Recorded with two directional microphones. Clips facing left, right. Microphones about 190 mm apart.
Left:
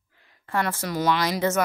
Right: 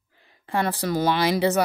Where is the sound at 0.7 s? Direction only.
30° right (ahead or behind).